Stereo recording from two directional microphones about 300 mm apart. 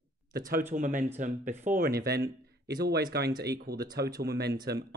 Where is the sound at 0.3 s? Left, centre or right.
Right.